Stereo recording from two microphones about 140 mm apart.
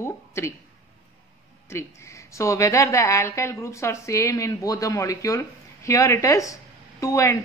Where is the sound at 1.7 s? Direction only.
20° left (ahead or behind).